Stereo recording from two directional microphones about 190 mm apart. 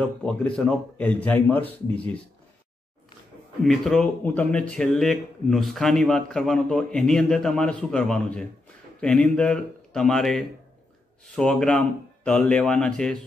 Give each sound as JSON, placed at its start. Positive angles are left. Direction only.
{"t": 0.0, "sound": "speech", "side_deg": 5}
{"t": 3.6, "sound": "speech", "side_deg": 0}